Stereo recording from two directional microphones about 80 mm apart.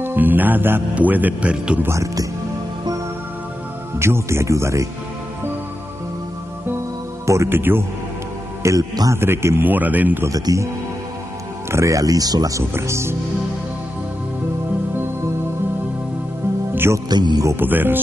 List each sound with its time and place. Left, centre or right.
0.0 s a man's voice: right
1.8 s speech: right
4.0 s speech: right
7.2 s a man's voice: right
8.6 s speech: right
9.1 s a man's voice: right
10.2 s speech: right
11.7 s speech: right
12.7 s speech: right
16.7 s speech: right
17.1 s a man's voice: right
17.6 s a man's voice: right